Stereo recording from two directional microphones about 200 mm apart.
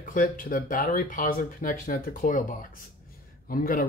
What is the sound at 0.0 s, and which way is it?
Speech, 40° left (ahead or behind).